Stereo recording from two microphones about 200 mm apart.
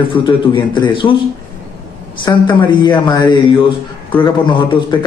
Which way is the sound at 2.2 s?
25° left (ahead or behind).